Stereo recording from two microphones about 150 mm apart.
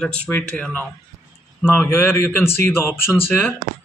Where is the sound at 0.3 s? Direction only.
10° left (ahead or behind).